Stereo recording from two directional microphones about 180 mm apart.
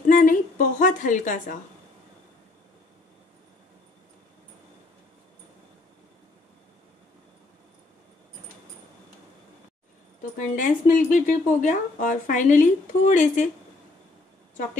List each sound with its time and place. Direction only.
0.1 s a woman's voice: 50° left (ahead or behind)
10.3 s speech: 45° left (ahead or behind)